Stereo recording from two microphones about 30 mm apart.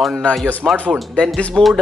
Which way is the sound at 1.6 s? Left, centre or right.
Centre.